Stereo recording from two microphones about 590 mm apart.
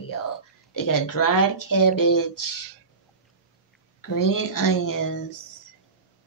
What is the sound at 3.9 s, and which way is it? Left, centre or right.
Speech, left.